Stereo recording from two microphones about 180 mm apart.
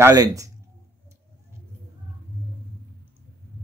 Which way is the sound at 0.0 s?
20° right (ahead or behind).